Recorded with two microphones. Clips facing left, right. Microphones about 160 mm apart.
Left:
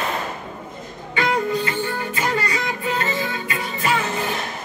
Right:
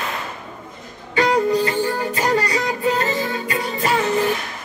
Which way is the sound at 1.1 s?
40° right (ahead or behind).